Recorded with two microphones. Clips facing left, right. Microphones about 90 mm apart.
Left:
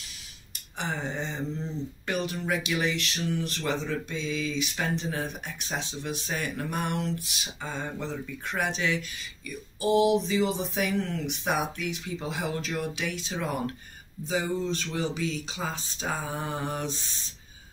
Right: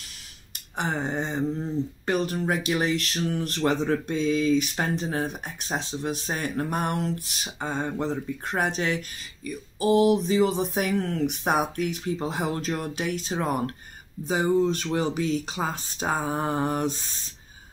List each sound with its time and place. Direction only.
0.7 s speech: 55° right (ahead or behind)
2.0 s speech: 40° right (ahead or behind)